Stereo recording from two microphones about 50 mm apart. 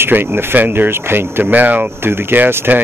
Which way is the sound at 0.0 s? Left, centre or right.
Right.